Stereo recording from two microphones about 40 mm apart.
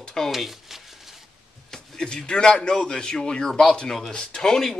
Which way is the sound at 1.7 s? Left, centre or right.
Centre.